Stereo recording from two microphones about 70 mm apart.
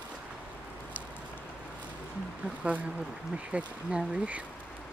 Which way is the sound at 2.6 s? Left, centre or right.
Centre.